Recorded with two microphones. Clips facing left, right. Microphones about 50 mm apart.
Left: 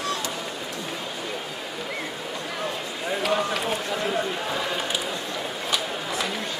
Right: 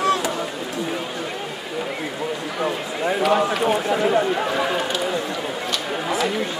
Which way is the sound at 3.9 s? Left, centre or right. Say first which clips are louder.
Right 7 dB; right.